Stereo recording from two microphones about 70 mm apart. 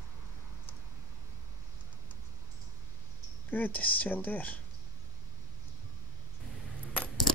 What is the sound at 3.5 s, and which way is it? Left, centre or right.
Speech, left.